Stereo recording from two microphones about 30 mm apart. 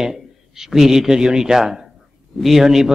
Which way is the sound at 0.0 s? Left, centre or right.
Centre.